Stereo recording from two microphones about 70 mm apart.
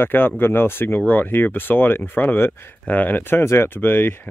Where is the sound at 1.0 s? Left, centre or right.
Left.